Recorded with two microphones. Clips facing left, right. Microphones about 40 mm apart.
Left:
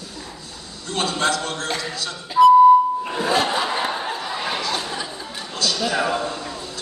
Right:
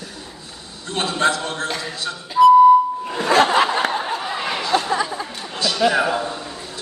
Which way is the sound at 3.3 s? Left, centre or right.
Right.